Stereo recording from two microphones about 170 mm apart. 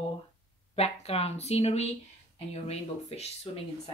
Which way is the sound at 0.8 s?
35° left (ahead or behind).